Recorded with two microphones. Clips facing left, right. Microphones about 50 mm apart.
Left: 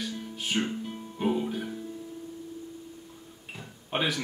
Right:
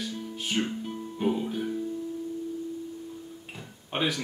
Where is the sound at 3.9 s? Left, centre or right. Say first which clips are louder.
Even; centre.